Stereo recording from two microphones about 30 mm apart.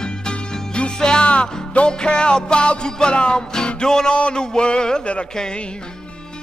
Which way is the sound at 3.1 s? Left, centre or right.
Left.